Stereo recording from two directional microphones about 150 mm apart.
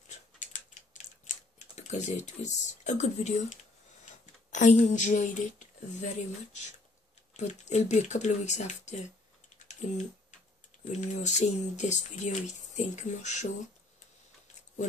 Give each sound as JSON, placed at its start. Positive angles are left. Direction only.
{"t": 0.1, "sound": "typing", "side_deg": 55}
{"t": 4.5, "sound": "speech", "side_deg": 55}
{"t": 9.6, "sound": "typing", "side_deg": 50}
{"t": 10.8, "sound": "speech", "side_deg": 55}